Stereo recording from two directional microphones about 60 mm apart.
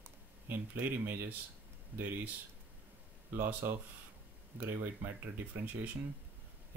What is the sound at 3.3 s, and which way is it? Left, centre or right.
Speech, right.